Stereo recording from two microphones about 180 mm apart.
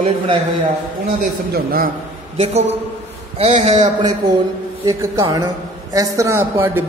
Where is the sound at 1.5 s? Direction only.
55° right (ahead or behind).